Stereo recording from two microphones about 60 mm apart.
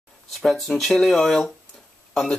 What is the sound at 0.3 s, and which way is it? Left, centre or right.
Speech, centre.